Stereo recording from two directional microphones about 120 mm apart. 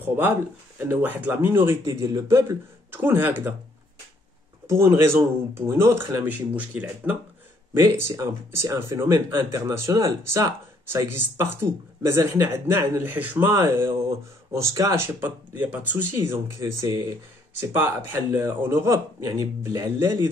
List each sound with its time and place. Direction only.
0.7 s speech: 15° right (ahead or behind)
4.6 s speech: 20° right (ahead or behind)